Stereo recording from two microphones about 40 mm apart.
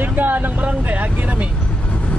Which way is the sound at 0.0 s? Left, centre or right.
Right.